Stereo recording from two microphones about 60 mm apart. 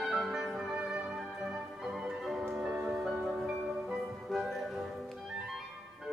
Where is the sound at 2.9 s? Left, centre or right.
Centre.